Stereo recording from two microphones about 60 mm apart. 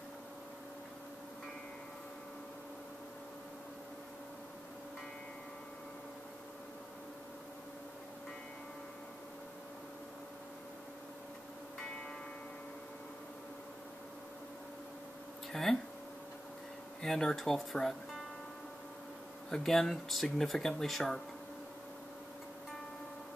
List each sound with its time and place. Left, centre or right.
15.5 s speech: centre
17.0 s speech: centre
19.5 s speech: centre